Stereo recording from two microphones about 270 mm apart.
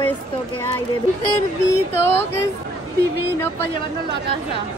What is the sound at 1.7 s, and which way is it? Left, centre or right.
Speech, centre.